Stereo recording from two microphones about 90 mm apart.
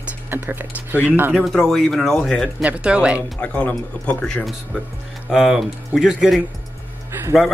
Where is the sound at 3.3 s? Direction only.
15° left (ahead or behind).